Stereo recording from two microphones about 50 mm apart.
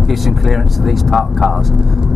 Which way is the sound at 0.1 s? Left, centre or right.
Centre.